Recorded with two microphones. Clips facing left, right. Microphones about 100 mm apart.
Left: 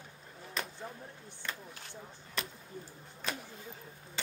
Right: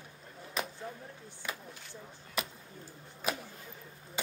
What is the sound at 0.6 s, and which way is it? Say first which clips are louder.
Chop: right 3 dB; 5° right (ahead or behind).